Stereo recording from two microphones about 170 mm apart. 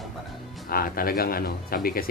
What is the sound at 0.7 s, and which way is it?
A man's voice, 60° left (ahead or behind).